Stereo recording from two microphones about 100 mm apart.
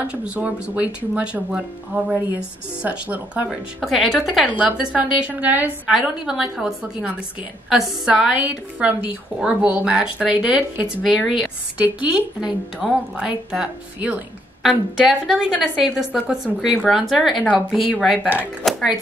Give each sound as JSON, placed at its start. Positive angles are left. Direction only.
{"t": 0.0, "sound": "a woman's voice", "side_deg": -10}
{"t": 3.4, "sound": "a woman's voice", "side_deg": 0}
{"t": 4.5, "sound": "a woman's voice", "side_deg": -10}
{"t": 5.9, "sound": "a woman's voice", "side_deg": -5}
{"t": 8.1, "sound": "a woman's voice", "side_deg": -15}
{"t": 14.6, "sound": "a woman's voice", "side_deg": -5}
{"t": 18.6, "sound": "a woman's voice", "side_deg": 0}